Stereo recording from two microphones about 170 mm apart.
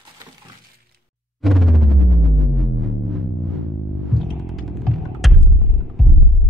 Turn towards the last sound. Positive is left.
turn(degrees=0)  # may be behind; listen again after turning